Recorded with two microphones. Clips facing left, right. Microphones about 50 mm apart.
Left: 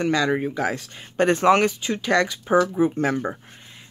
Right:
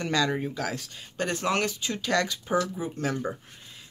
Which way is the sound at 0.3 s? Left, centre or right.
Left.